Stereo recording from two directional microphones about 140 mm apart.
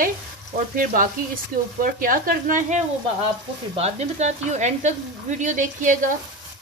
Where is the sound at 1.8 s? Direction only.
85° right; by 2.8 s 70° right (ahead or behind).